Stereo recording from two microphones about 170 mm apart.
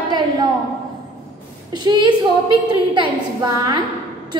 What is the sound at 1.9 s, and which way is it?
A woman's voice, 20° right (ahead or behind).